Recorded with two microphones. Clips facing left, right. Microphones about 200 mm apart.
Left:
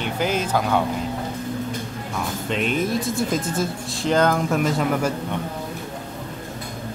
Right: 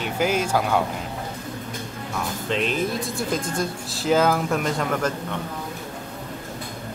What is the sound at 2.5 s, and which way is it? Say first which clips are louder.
Speech: left 2 dB; centre (ahead or behind).